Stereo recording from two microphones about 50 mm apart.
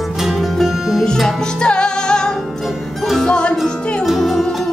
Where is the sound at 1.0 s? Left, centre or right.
Centre.